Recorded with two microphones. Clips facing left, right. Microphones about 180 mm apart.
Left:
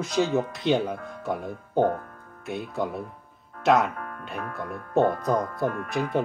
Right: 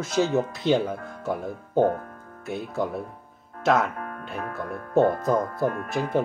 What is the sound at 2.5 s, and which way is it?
Speech, centre (ahead or behind).